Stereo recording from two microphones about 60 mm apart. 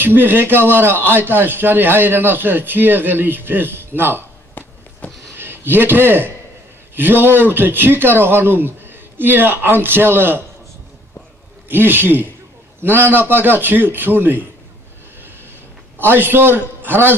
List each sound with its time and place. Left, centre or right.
0.0 s speech: right
4.6 s a sound: left
5.3 s a man's voice: right
11.7 s speech: right
16.0 s speech: right